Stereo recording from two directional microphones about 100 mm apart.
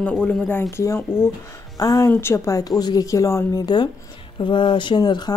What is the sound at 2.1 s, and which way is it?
A woman's voice, 25° left (ahead or behind).